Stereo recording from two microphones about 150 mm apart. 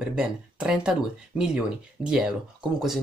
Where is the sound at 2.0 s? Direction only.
5° right (ahead or behind).